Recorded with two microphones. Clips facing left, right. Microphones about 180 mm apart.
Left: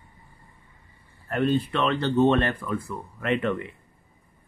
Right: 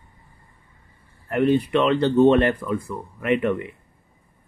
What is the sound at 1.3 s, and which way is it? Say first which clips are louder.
Speech: right 5 dB; 15° right (ahead or behind).